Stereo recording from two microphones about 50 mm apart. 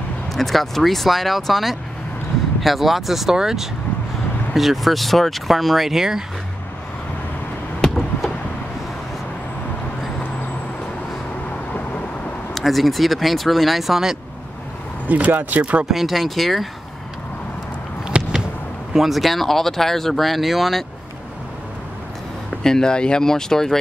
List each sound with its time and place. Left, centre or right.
0.3 s speech: centre
12.5 s speech: centre
15.0 s speech: right
15.8 s speech: centre
18.1 s a sound: right
18.9 s speech: centre
22.6 s speech: centre